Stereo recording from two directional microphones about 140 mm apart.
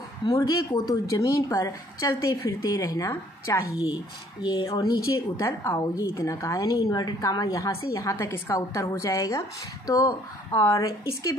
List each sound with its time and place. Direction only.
0.2 s a woman's voice: 25° left (ahead or behind)